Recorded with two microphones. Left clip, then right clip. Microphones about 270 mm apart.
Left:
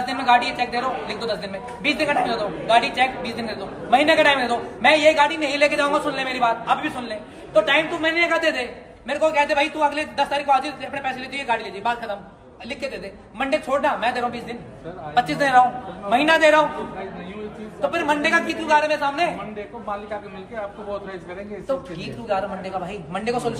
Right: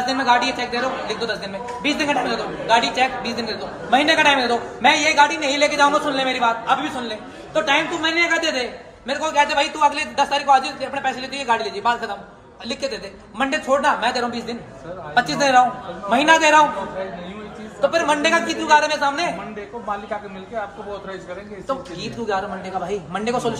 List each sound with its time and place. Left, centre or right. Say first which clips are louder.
0.0 s a man's voice: right 1 dB; centre
13.5 s a man's voice: right 2 dB; centre
17.9 s a man's voice: right 1 dB; centre
23.1 s a man's voice: even; centre